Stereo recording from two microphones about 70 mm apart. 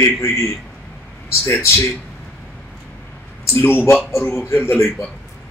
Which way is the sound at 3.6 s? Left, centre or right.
Left.